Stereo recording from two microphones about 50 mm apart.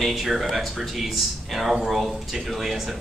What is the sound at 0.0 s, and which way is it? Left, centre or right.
Speech, centre.